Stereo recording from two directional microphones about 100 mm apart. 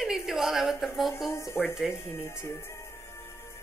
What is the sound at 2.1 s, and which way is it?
Speech, 25° left (ahead or behind).